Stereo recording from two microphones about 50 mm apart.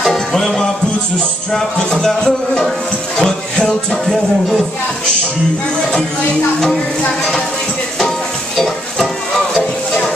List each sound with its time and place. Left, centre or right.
0.0 s music: centre
4.0 s music: centre
8.5 s stir: centre